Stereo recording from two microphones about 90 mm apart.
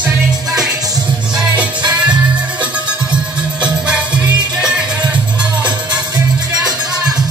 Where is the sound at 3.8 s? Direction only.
15° right (ahead or behind).